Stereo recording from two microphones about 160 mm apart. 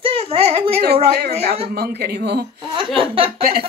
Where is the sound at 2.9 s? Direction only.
35° right (ahead or behind).